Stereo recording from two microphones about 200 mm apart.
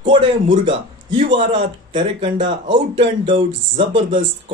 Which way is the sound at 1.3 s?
25° right (ahead or behind).